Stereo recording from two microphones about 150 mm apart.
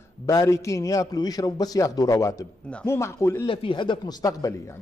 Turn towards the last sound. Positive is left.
turn(degrees=25)  # may be behind; listen again after turning